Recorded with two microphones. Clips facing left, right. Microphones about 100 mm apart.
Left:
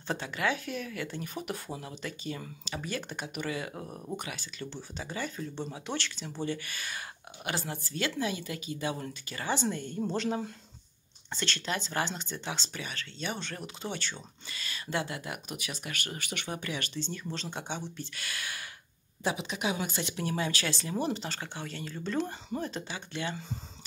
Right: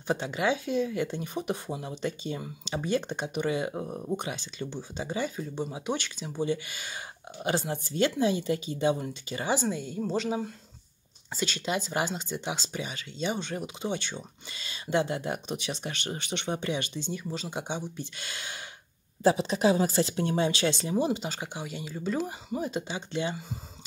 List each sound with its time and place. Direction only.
0.0 s speech: 20° right (ahead or behind)
19.2 s speech: 35° right (ahead or behind)